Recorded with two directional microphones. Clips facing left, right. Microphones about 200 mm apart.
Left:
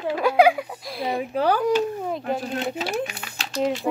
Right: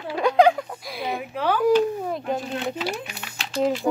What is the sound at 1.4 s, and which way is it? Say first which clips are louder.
Speech: left 2 dB; 40° left (ahead or behind).